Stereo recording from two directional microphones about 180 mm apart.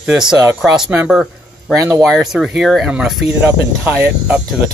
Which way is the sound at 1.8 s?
15° right (ahead or behind).